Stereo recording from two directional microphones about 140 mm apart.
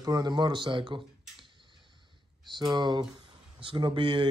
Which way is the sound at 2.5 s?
30° right (ahead or behind).